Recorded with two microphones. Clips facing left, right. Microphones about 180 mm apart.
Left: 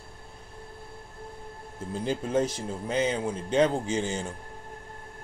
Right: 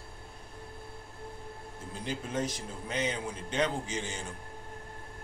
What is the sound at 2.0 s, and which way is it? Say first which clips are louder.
Speech: left 7 dB; 30° left (ahead or behind).